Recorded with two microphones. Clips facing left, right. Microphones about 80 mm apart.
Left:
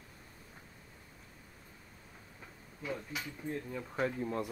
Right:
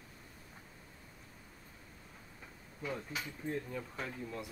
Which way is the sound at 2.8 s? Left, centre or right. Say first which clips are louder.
Left 1 dB; centre.